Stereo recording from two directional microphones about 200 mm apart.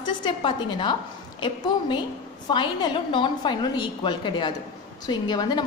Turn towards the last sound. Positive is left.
turn(degrees=20)  # may be behind; listen again after turning